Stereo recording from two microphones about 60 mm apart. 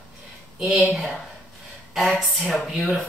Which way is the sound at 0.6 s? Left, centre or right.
Centre.